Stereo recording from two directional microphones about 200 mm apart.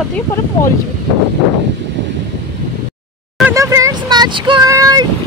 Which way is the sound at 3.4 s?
15° right (ahead or behind).